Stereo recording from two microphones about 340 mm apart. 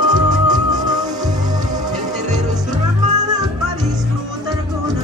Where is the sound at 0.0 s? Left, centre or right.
Centre.